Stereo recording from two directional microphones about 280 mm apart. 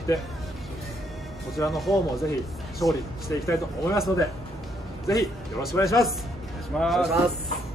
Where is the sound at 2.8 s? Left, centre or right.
Centre.